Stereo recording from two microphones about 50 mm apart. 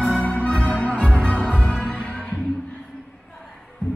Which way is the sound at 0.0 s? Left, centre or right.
Centre.